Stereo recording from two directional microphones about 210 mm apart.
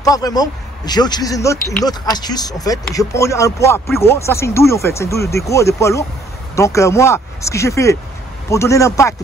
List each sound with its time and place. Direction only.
0.0 s speech: 15° left (ahead or behind)